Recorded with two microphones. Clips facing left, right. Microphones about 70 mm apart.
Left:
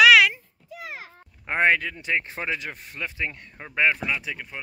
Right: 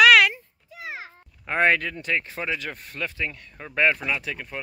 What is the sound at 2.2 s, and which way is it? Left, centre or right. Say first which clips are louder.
Speech: even; left.